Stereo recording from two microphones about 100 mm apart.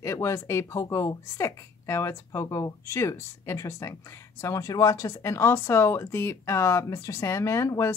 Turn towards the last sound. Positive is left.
turn(degrees=30)  # may be behind; listen again after turning